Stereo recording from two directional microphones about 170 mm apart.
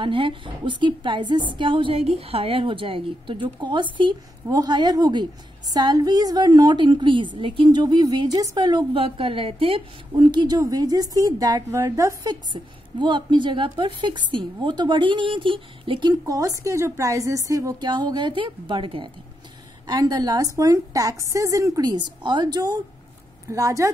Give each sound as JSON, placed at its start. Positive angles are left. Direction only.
{"t": 0.0, "sound": "a woman's voice", "side_deg": -30}